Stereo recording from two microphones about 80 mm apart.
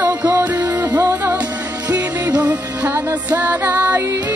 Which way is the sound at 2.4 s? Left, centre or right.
Centre.